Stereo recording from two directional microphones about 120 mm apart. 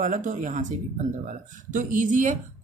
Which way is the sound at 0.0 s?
90° right.